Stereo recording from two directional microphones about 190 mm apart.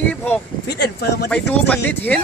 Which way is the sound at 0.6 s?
60° left (ahead or behind).